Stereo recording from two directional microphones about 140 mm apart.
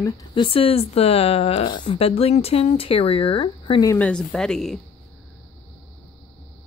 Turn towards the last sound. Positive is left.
turn(degrees=0)  # may be behind; listen again after turning